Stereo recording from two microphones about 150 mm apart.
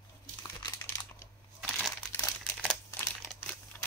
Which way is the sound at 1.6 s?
Centre (ahead or behind).